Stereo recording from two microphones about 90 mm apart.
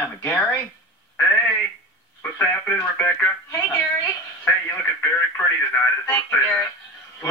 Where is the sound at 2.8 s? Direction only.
30° left (ahead or behind).